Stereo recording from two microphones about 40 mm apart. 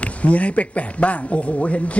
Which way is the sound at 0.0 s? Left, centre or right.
Left.